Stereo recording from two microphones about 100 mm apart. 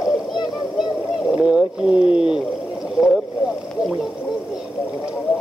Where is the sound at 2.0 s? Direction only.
70° left (ahead or behind).